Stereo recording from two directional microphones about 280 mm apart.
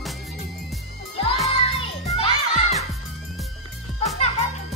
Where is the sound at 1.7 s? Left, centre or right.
Centre.